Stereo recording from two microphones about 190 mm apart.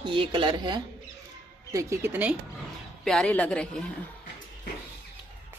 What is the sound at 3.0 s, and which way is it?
Speech, 5° left (ahead or behind).